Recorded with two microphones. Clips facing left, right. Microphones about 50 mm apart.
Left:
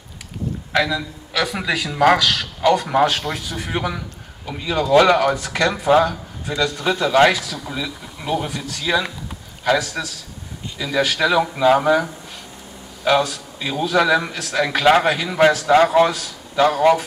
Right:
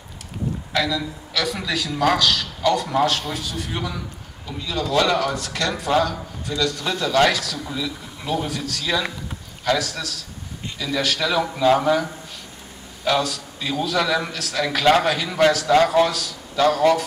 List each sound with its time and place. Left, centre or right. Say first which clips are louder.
0.7 s a man's voice: left 3 dB; centre